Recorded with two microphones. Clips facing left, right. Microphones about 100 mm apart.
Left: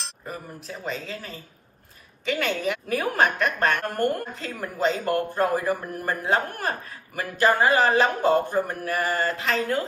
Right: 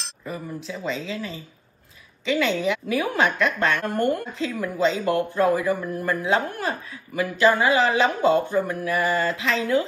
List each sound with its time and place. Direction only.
0.2 s speech: 50° left (ahead or behind)